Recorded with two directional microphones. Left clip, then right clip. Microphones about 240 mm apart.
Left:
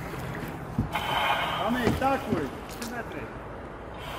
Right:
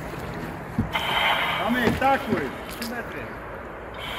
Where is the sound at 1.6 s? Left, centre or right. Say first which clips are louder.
Right 4 dB; centre.